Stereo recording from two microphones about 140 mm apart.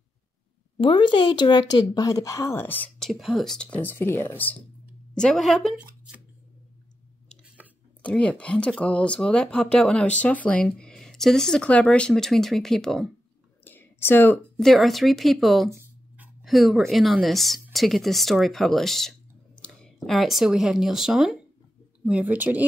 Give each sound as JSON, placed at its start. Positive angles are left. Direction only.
{"t": 0.7, "sound": "speech", "side_deg": 35}
{"t": 3.0, "sound": "speech", "side_deg": 0}
{"t": 8.0, "sound": "speech", "side_deg": 10}
{"t": 13.7, "sound": "a sound", "side_deg": 15}
{"t": 14.6, "sound": "speech", "side_deg": 0}